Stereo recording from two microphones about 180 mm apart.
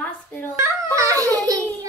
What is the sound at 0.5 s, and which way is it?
A child's voice, 15° right (ahead or behind).